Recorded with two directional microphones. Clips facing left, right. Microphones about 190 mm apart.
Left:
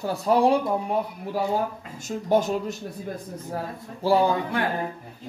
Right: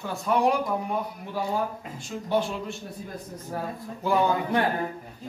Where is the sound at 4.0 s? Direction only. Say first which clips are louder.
Left 3 dB; 30° left (ahead or behind).